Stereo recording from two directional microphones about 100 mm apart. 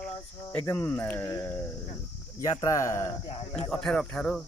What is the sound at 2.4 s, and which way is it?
Speech, 35° left (ahead or behind).